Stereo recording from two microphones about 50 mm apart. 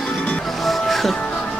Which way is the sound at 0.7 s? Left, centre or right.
Centre.